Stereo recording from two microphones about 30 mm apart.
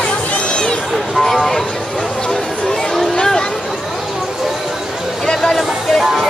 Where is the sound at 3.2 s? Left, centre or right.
Left.